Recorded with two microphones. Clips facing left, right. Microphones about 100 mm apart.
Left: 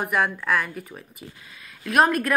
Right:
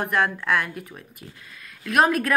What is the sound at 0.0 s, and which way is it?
Speech, 5° left (ahead or behind).